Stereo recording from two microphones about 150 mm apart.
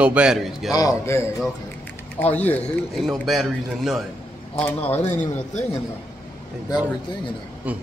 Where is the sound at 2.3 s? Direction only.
10° left (ahead or behind).